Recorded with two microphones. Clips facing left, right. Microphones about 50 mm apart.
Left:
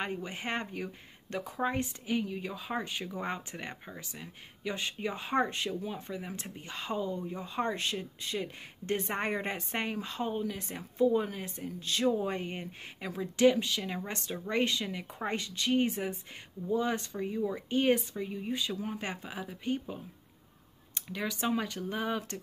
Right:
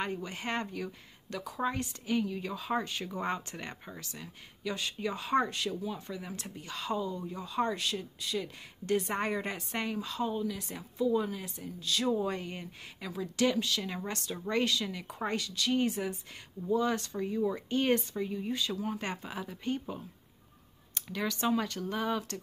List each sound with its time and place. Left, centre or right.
0.0 s a woman's voice: left